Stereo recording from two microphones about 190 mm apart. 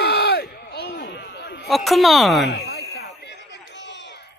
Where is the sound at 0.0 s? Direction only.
65° left (ahead or behind).